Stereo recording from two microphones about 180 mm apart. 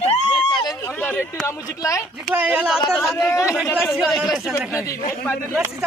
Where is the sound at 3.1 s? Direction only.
15° left (ahead or behind).